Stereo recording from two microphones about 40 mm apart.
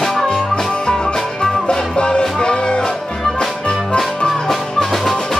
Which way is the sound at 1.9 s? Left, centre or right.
Left.